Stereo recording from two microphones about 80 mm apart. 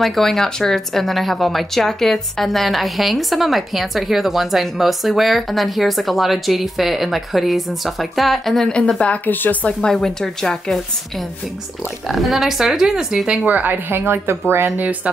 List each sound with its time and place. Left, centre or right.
0.0 s speech: centre
13.6 s speech: right